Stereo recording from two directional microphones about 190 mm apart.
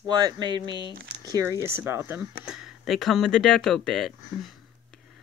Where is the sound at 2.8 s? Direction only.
Centre (ahead or behind).